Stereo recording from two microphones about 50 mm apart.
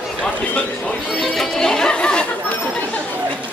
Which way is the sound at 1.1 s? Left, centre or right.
Centre.